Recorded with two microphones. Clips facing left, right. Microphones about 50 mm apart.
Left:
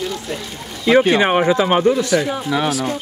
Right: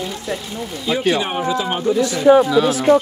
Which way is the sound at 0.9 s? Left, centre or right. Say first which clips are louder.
Left 9 dB; left.